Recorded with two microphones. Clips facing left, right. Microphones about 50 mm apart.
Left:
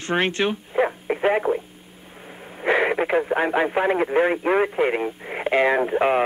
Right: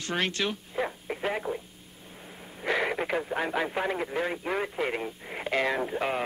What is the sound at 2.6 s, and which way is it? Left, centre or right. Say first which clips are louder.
Speech: left 8 dB; left.